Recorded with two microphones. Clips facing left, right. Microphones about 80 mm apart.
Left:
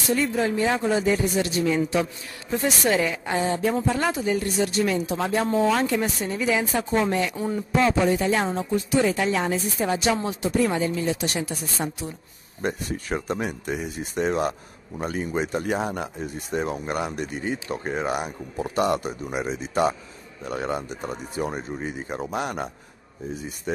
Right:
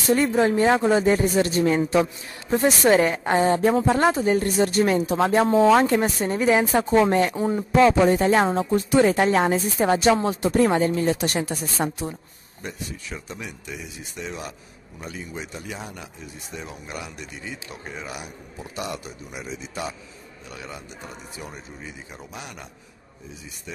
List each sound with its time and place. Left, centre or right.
0.1 s speech: right
0.7 s speech: right
1.0 s a woman's voice: right
12.6 s a man's voice: left